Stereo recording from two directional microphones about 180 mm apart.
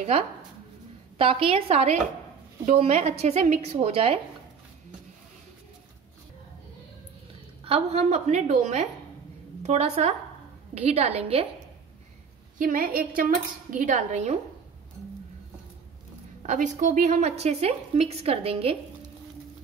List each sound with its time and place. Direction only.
1.1 s a woman's voice: 30° right (ahead or behind)
7.6 s a woman's voice: 35° right (ahead or behind)
12.5 s speech: 50° right (ahead or behind)
16.4 s a woman's voice: 45° right (ahead or behind)